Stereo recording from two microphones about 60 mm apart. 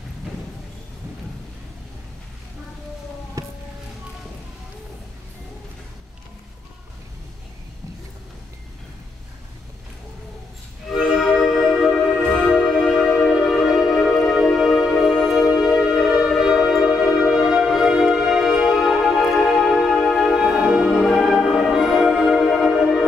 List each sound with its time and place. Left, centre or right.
3.4 s a sound: right
11.3 s music: centre
13.3 s music: centre
15.0 s music: centre
15.8 s music: centre